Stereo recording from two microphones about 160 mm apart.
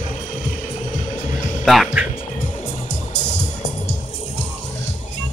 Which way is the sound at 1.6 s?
Centre (ahead or behind).